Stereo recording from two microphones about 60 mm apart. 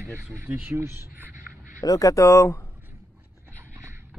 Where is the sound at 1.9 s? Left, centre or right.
Left.